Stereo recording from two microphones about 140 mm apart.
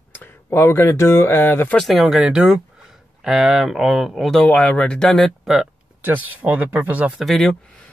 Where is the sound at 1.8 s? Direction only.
Centre (ahead or behind).